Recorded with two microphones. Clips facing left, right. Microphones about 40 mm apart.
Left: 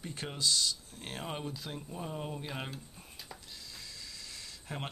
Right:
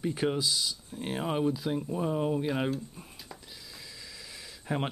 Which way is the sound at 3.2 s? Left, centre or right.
Centre.